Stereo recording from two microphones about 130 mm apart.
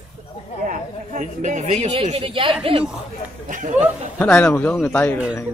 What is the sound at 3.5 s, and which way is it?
Speech, 80° right.